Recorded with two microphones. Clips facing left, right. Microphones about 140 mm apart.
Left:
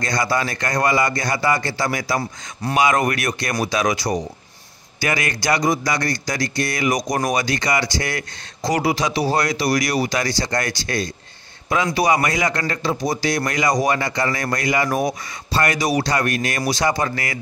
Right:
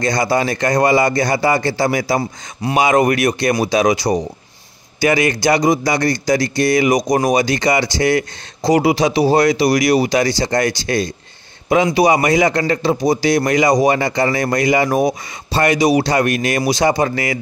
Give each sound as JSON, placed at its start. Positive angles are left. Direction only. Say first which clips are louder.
{"t": 0.0, "sound": "a man's voice", "louder": "right 5 dB", "side_deg": -25}